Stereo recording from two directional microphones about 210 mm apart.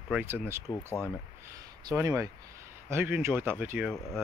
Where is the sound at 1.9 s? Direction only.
15° right (ahead or behind).